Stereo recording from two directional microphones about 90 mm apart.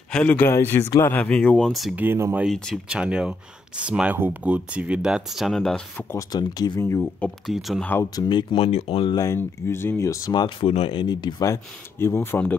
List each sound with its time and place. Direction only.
0.1 s speech: 15° left (ahead or behind)
1.7 s speech: centre (ahead or behind)
2.0 s speech: 25° right (ahead or behind)
2.5 s speech: 5° left (ahead or behind)
2.9 s speech: 10° right (ahead or behind)
6.1 s speech: 45° left (ahead or behind)
6.8 s speech: 30° left (ahead or behind)
7.4 s speech: centre (ahead or behind)
8.3 s speech: 60° left (ahead or behind); by 9.1 s 90° left
9.1 s speech: 35° left (ahead or behind)
10.3 s speech: 75° left (ahead or behind)
11.1 s speech: 55° left (ahead or behind)
11.4 s speech: 30° left (ahead or behind)